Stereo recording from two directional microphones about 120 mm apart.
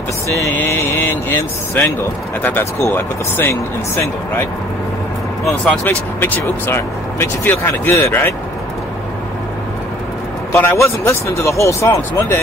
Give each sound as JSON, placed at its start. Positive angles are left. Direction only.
{"t": 0.3, "sound": "a sound", "side_deg": 20}
{"t": 2.4, "sound": "speech", "side_deg": 20}
{"t": 5.4, "sound": "speech", "side_deg": 5}
{"t": 5.9, "sound": "speech", "side_deg": 15}
{"t": 10.5, "sound": "speech", "side_deg": 20}